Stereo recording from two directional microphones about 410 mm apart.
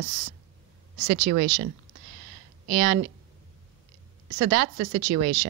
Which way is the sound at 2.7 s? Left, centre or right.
Right.